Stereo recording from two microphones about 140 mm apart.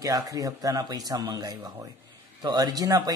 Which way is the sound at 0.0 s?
25° right (ahead or behind).